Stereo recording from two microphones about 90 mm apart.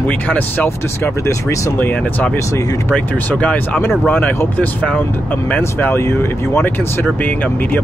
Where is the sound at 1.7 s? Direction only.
15° left (ahead or behind).